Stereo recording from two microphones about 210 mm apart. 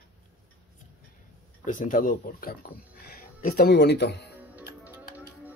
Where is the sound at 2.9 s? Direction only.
45° left (ahead or behind).